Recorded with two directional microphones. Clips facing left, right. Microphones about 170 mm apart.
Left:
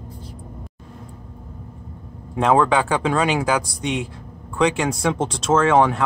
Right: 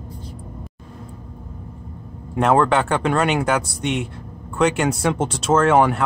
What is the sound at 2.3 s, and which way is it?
Speech, centre (ahead or behind).